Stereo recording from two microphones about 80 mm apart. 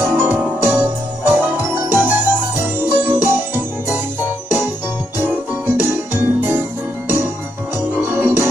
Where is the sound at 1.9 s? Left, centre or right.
Right.